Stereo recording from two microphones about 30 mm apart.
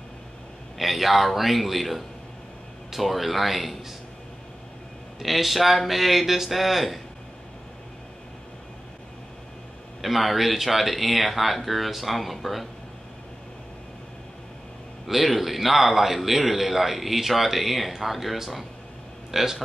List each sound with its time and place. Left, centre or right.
0.7 s a man's voice: centre
5.2 s a man's voice: centre
10.0 s a man's voice: centre
15.0 s a man's voice: centre
19.3 s a man's voice: centre